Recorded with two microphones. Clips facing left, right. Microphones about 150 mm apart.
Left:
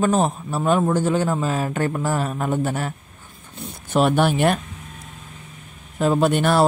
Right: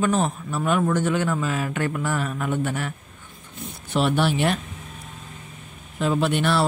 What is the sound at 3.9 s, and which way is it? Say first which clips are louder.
Speech: left 4 dB; 45° left (ahead or behind).